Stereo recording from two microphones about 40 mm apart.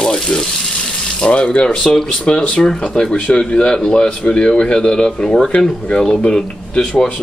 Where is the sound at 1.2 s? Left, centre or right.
Left.